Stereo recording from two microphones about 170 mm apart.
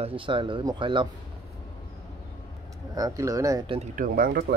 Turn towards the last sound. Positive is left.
turn(degrees=-65)  # may be behind; listen again after turning